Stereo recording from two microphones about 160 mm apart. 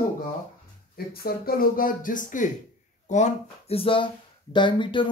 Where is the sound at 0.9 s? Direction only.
70° left (ahead or behind).